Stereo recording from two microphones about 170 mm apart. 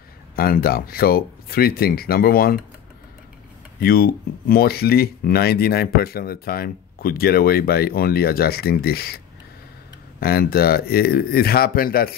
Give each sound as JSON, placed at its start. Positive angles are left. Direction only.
{"t": 0.4, "sound": "speech", "side_deg": 65}
{"t": 3.8, "sound": "speech", "side_deg": 60}
{"t": 10.2, "sound": "speech", "side_deg": 65}